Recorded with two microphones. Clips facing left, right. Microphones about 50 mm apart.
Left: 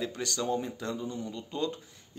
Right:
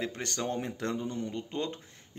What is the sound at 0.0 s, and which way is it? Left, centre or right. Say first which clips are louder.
Speech: left 1 dB; right.